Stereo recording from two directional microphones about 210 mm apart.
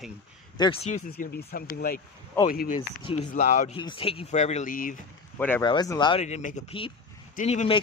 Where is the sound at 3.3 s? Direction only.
40° left (ahead or behind).